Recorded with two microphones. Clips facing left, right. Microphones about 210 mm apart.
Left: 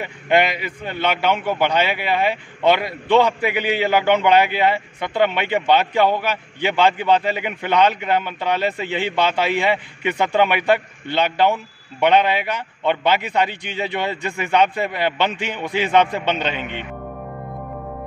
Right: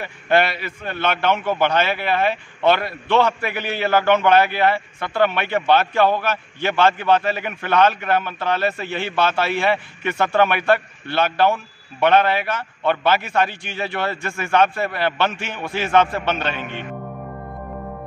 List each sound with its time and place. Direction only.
0.0 s a man's voice: 15° left (ahead or behind)